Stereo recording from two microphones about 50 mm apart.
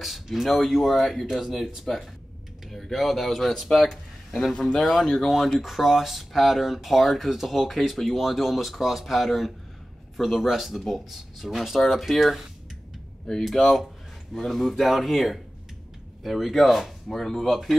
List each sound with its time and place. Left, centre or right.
0.0 s speech: centre
5.6 s speech: centre
13.4 s speech: centre